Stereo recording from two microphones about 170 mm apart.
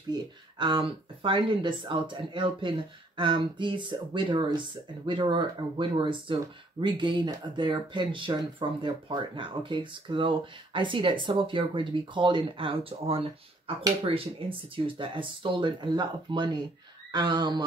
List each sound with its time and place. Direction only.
0.1 s speech: 30° right (ahead or behind)